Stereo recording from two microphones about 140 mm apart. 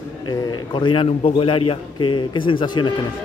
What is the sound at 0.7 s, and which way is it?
A man's voice, 35° left (ahead or behind).